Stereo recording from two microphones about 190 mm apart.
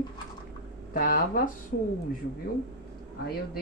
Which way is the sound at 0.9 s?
45° left (ahead or behind).